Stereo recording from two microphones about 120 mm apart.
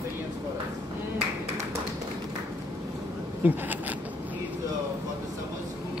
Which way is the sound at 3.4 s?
15° right (ahead or behind).